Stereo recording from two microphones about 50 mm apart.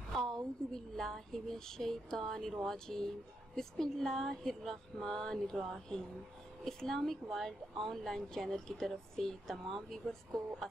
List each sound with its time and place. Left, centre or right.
0.1 s speech: centre